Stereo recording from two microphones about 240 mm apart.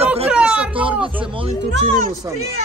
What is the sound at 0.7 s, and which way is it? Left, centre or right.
Speech, right.